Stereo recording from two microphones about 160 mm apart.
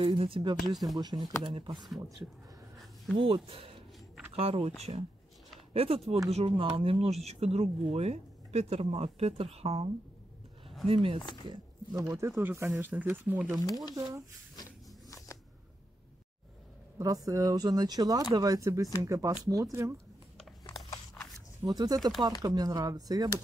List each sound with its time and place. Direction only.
0.0 s speech: 35° right (ahead or behind)
0.7 s speech: centre (ahead or behind)
0.9 s speech: 25° right (ahead or behind)
3.2 s speech: 35° right (ahead or behind)
10.9 s speech: 35° right (ahead or behind)
11.1 s speech: 30° left (ahead or behind)
11.4 s speech: 25° right (ahead or behind)
13.9 s speech: 20° right (ahead or behind)
14.5 s a sound: 25° left (ahead or behind)
17.0 s speech: 20° right (ahead or behind)
20.6 s a sound: 20° left (ahead or behind)
21.6 s speech: 25° right (ahead or behind)